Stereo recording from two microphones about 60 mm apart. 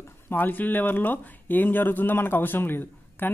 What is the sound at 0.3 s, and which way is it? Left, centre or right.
Speech, left.